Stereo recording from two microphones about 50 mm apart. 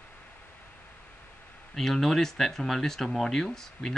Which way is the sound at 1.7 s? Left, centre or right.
Centre.